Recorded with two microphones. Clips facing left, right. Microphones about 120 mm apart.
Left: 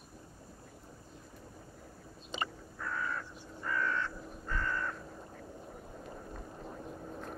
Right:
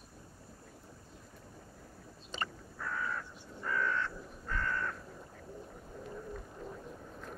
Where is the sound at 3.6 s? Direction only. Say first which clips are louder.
Even; centre (ahead or behind).